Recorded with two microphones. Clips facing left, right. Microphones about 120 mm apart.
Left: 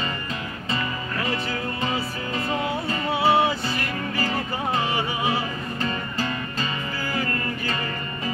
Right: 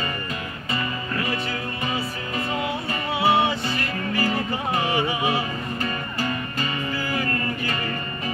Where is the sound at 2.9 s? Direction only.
15° right (ahead or behind).